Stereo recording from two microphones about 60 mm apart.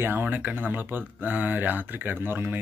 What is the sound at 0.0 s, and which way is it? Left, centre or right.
Speech, right.